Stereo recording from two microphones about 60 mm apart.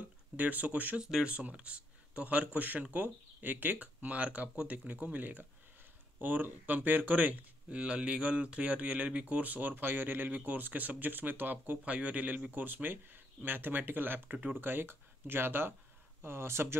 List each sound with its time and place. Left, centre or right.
0.4 s speech: right
1.0 s speech: centre
7.8 s speech: centre
14.6 s speech: right